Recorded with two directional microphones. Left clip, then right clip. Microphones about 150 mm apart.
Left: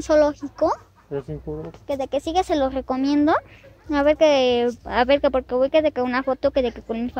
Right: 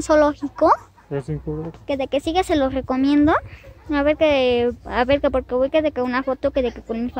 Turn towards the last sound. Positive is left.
turn(degrees=5)  # may be behind; listen again after turning